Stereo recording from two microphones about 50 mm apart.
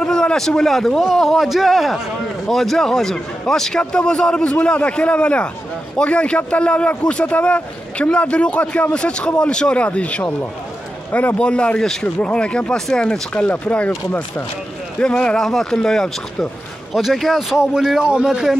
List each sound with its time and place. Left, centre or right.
0.0 s a man's voice: centre; by 11.3 s left
11.3 s a man's voice: left
12.7 s a man's voice: centre
13.5 s speech: left
15.0 s a man's voice: left
16.9 s a man's voice: centre
17.6 s speech: centre